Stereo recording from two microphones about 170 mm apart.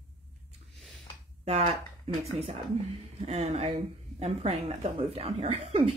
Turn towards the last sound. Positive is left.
turn(degrees=-40)  # may be behind; listen again after turning